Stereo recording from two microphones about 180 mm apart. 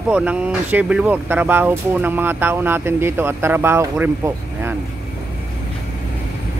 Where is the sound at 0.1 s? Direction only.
5° right (ahead or behind).